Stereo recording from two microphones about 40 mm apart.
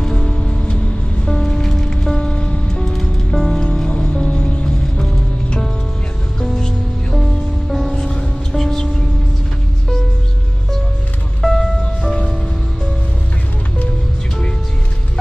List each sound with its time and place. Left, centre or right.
0.0 s music: centre
2.7 s music: centre
7.2 s music: centre
8.0 s music: left
8.5 s music: centre
11.4 s music: centre